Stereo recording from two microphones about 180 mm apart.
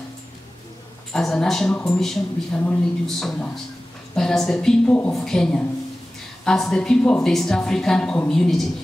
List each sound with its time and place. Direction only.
1.1 s speech: 5° left (ahead or behind)